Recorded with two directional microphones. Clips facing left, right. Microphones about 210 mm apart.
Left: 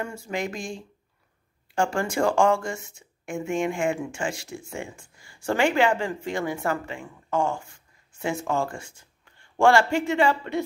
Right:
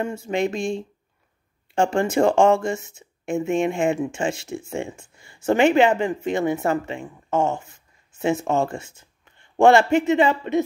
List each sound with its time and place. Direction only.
0.0 s speech: 25° right (ahead or behind)